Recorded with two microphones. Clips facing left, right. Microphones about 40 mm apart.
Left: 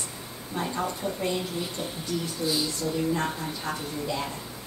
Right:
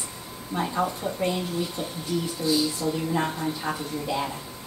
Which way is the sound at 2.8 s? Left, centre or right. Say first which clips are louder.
Right 1 dB; centre.